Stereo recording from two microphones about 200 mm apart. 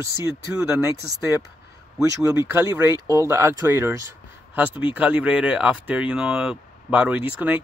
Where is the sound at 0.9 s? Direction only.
15° right (ahead or behind).